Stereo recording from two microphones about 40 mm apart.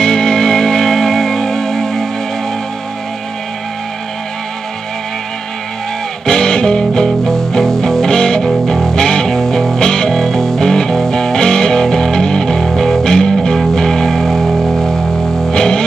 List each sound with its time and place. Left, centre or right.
0.0 s music: centre
6.2 s music: centre
15.5 s vehicle: centre